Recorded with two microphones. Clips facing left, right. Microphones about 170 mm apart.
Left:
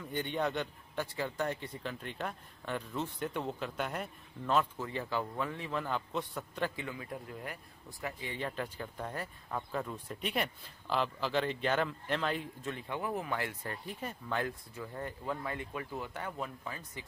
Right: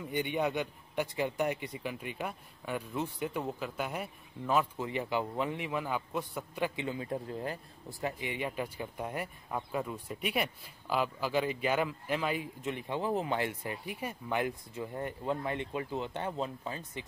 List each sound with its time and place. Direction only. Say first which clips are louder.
0.0 s a man's voice: right 2 dB; 10° right (ahead or behind)
4.7 s a man's voice: right 3 dB; 15° right (ahead or behind)
8.0 s a man's voice: right 3 dB; 15° right (ahead or behind)
12.6 s speech: right 5 dB; 20° right (ahead or behind)